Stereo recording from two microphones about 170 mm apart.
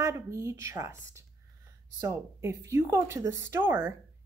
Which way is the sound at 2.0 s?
15° right (ahead or behind).